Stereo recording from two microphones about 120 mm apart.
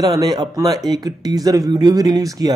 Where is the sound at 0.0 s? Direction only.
30° right (ahead or behind).